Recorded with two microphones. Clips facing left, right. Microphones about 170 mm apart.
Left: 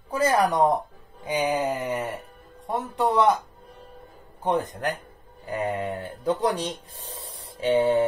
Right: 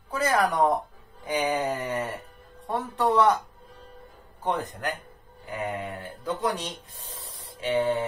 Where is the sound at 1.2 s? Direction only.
15° left (ahead or behind).